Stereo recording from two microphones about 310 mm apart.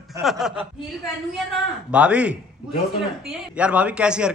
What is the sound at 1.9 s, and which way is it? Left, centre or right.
A man's voice, centre.